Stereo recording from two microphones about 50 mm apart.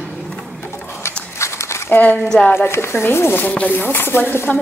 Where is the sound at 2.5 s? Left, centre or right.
Left.